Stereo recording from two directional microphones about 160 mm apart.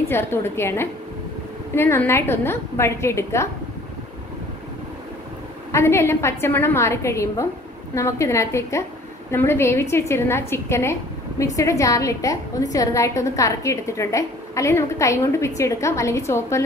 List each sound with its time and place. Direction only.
0.1 s a woman's voice: 15° left (ahead or behind)
5.7 s a woman's voice: 15° left (ahead or behind)